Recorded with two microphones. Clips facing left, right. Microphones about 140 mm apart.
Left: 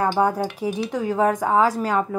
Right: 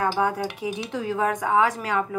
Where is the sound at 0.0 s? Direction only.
40° left (ahead or behind).